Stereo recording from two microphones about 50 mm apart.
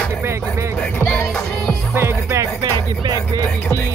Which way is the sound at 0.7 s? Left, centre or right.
Left.